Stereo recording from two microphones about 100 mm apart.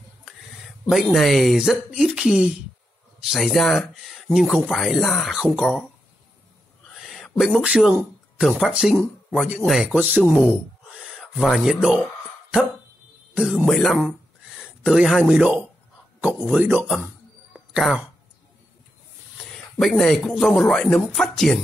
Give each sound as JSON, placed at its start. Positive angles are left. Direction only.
{"t": 0.2, "sound": "a sound", "side_deg": -5}
{"t": 1.0, "sound": "speech", "side_deg": 0}
{"t": 5.4, "sound": "speech", "side_deg": -10}
{"t": 6.9, "sound": "a sound", "side_deg": 0}
{"t": 8.4, "sound": "speech", "side_deg": 0}
{"t": 9.9, "sound": "speech", "side_deg": -15}
{"t": 10.2, "sound": "speech", "side_deg": -5}
{"t": 13.3, "sound": "a man's voice", "side_deg": -5}
{"t": 19.3, "sound": "speech", "side_deg": 5}